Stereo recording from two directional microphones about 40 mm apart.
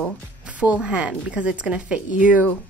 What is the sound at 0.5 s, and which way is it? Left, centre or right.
A woman's voice, right.